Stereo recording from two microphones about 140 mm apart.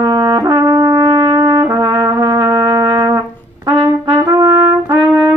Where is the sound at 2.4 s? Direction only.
25° right (ahead or behind).